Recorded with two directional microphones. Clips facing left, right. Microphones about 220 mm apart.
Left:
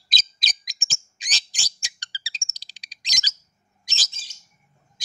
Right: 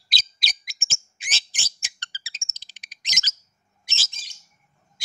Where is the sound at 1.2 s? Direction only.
15° left (ahead or behind).